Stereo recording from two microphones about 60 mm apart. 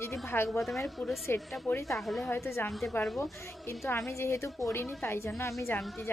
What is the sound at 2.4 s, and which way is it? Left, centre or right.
Speech, left.